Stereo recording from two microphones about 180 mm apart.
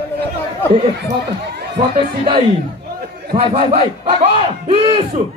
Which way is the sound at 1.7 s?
30° right (ahead or behind).